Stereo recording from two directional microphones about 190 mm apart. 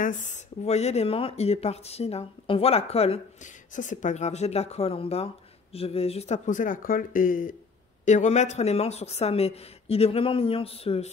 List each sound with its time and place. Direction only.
0.0 s speech: 40° left (ahead or behind)